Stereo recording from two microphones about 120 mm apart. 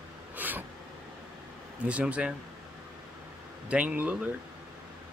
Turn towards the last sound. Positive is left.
turn(degrees=-10)  # may be behind; listen again after turning